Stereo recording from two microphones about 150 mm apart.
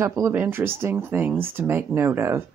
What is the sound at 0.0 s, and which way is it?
Speech, 20° right (ahead or behind).